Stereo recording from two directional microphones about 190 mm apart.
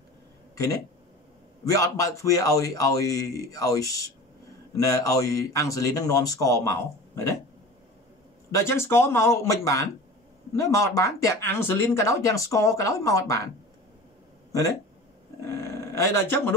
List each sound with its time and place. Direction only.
1.6 s speech: 15° left (ahead or behind)
8.5 s speech: 15° left (ahead or behind)
15.4 s dog: 15° left (ahead or behind)